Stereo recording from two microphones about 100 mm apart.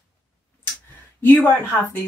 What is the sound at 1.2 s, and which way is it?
Speech, 20° left (ahead or behind).